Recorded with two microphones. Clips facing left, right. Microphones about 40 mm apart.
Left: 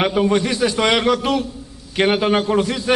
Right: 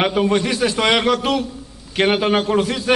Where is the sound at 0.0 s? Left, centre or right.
Centre.